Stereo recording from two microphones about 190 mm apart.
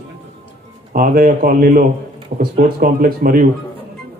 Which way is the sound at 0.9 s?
50° right (ahead or behind).